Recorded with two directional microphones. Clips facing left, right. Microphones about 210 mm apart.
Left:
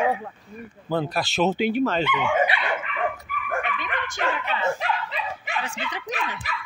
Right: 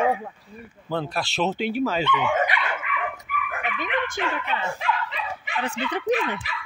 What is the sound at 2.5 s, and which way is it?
Dog, 35° left (ahead or behind).